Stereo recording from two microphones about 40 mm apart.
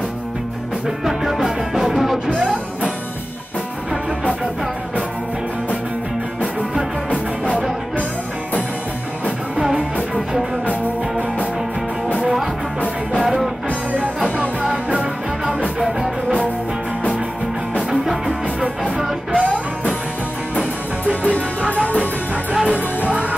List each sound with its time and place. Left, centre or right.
0.8 s music: centre
13.2 s music: centre
14.3 s music: right
19.3 s music: right
21.2 s music: left